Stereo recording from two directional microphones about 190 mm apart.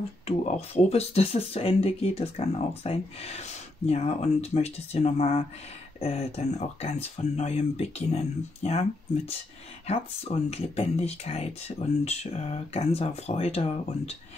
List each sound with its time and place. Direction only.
0.5 s speech: 35° left (ahead or behind)